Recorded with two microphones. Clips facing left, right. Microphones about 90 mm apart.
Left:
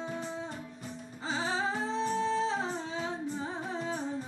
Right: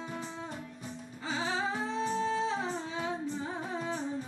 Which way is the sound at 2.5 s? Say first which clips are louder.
Left 1 dB; 25° left (ahead or behind).